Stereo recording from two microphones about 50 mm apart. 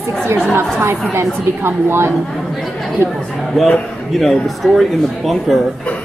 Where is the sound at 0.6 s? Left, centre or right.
Right.